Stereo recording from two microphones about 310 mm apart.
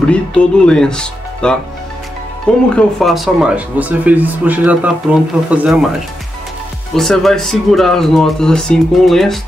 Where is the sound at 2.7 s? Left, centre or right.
Centre.